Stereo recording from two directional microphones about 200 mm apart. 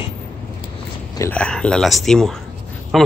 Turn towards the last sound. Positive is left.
turn(degrees=0)  # may be behind; listen again after turning